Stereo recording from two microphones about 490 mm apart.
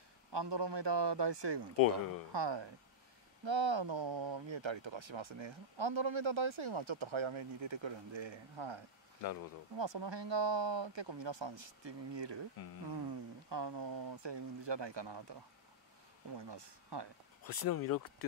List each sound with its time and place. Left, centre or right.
0.3 s speech: right
16.3 s speech: right
17.5 s speech: left